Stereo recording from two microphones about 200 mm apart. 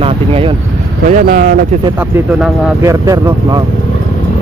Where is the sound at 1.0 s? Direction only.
40° right (ahead or behind).